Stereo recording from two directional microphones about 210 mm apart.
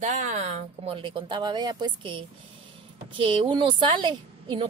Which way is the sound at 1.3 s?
20° right (ahead or behind).